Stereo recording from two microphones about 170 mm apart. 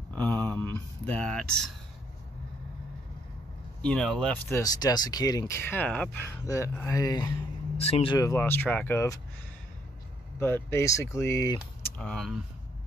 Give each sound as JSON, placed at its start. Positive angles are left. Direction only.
{"t": 0.1, "sound": "a sound", "side_deg": 10}
{"t": 0.5, "sound": "speech", "side_deg": 10}
{"t": 3.8, "sound": "speech", "side_deg": 5}
{"t": 4.5, "sound": "speech", "side_deg": 20}
{"t": 7.7, "sound": "speech", "side_deg": 35}
{"t": 8.2, "sound": "speech", "side_deg": 15}
{"t": 10.4, "sound": "speech", "side_deg": 15}
{"t": 12.0, "sound": "speech", "side_deg": 5}